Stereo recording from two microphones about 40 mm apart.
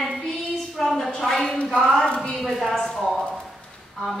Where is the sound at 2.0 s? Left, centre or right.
Left.